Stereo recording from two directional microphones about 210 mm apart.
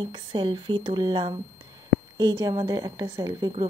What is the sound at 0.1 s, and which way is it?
A woman's voice, 20° right (ahead or behind).